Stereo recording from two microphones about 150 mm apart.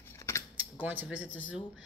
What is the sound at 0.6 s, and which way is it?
Speech, 10° right (ahead or behind).